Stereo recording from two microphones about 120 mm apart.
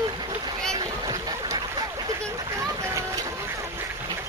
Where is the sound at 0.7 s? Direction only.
30° right (ahead or behind).